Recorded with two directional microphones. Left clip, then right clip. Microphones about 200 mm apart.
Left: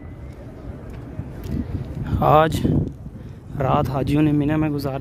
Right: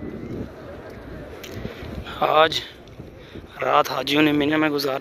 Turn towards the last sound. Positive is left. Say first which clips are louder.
# right 2 dB
turn(degrees=5)  # may be behind; listen again after turning